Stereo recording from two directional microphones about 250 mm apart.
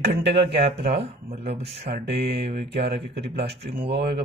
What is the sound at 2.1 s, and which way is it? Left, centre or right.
Speech, right.